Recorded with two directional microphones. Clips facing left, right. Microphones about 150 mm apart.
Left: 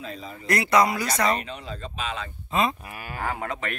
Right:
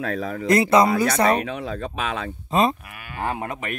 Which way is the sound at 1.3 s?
60° right (ahead or behind).